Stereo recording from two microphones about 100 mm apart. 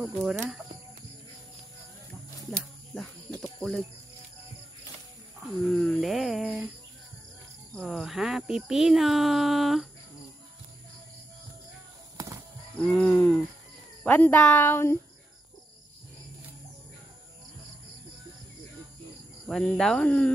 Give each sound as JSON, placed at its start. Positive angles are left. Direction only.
{"t": 0.0, "sound": "speech", "side_deg": -5}
{"t": 2.5, "sound": "snake", "side_deg": 5}
{"t": 5.6, "sound": "speech", "side_deg": 5}
{"t": 7.8, "sound": "speech", "side_deg": 0}
{"t": 12.7, "sound": "speech", "side_deg": 10}
{"t": 19.4, "sound": "speech", "side_deg": 5}